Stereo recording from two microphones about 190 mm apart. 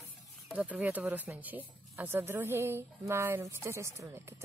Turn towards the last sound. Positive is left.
turn(degrees=-15)  # may be behind; listen again after turning